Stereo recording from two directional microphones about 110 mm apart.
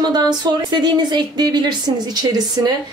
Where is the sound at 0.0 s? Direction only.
40° right (ahead or behind).